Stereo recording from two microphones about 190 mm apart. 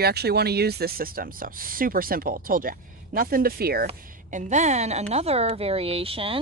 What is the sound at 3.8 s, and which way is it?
A woman's voice, 40° right (ahead or behind).